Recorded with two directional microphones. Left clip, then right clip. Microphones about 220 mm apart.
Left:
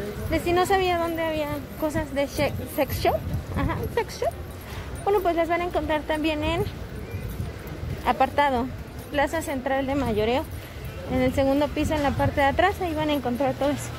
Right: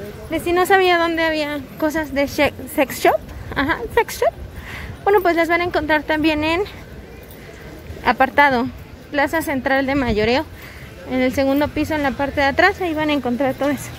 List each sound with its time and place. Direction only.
0.3 s a woman's voice: 20° right (ahead or behind)
8.0 s a woman's voice: 25° right (ahead or behind)